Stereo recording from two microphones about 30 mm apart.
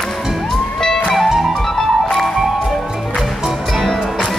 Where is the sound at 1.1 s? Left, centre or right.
Centre.